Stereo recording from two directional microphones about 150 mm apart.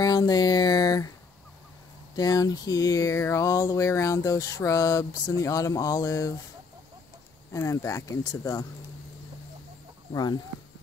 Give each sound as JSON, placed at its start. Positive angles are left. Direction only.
{"t": 0.0, "sound": "speech", "side_deg": 25}
{"t": 2.1, "sound": "speech", "side_deg": 25}
{"t": 7.5, "sound": "speech", "side_deg": 20}